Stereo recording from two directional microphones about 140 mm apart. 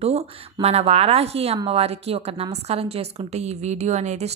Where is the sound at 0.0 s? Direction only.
45° right (ahead or behind).